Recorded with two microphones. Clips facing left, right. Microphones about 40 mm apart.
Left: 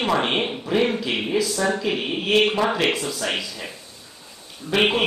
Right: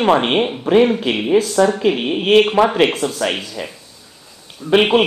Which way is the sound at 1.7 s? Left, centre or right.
Right.